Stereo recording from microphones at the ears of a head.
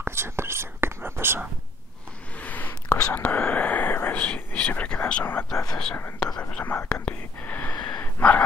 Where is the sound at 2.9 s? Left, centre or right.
Left.